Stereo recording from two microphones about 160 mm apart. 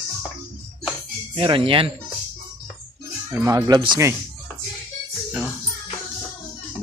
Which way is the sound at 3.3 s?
20° right (ahead or behind).